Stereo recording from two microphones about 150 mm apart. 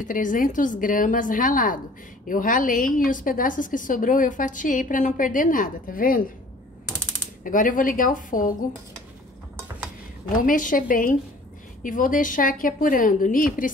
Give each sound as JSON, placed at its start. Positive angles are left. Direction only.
{"t": 0.0, "sound": "a woman's voice", "side_deg": 60}
{"t": 7.4, "sound": "a woman's voice", "side_deg": 65}
{"t": 10.3, "sound": "a woman's voice", "side_deg": 65}